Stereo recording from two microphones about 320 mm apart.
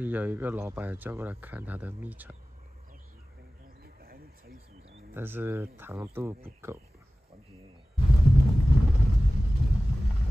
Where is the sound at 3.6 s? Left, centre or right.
Right.